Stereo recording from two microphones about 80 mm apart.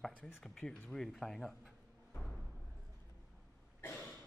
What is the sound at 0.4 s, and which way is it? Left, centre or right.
Speech, centre.